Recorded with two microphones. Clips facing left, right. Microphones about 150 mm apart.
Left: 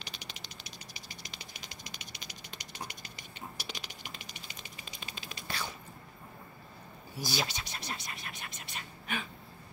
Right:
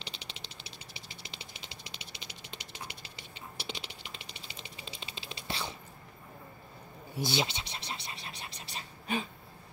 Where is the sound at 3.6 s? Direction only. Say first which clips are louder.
Right 2 dB; 25° right (ahead or behind).